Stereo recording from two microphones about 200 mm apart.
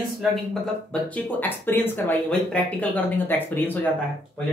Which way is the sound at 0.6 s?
5° left (ahead or behind).